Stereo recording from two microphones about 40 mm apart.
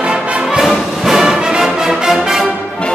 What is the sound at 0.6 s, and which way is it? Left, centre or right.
Music, centre.